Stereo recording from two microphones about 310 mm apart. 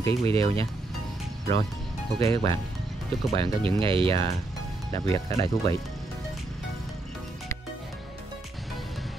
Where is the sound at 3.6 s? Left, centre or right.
Centre.